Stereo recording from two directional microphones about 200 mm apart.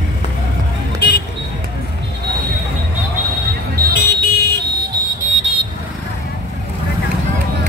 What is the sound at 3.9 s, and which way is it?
Vehicle, 50° left (ahead or behind).